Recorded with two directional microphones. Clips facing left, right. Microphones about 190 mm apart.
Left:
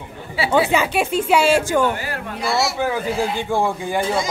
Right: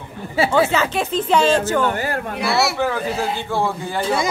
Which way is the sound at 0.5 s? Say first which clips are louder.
Left 3 dB; 15° left (ahead or behind).